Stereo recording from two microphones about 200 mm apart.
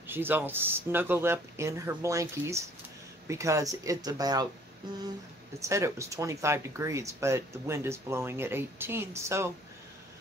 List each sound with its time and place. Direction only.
0.0 s speech: 10° right (ahead or behind)
5.6 s speech: 15° right (ahead or behind)